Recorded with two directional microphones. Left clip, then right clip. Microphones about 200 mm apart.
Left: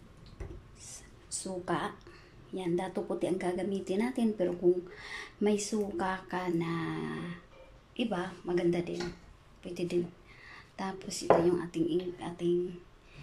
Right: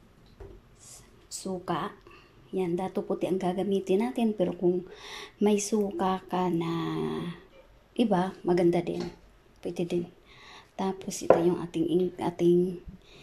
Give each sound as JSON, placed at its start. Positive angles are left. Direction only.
{"t": 1.3, "sound": "a woman's voice", "side_deg": -10}
{"t": 12.2, "sound": "a woman's voice", "side_deg": -30}